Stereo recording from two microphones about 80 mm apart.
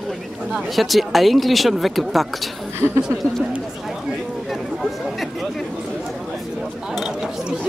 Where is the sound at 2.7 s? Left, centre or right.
Right.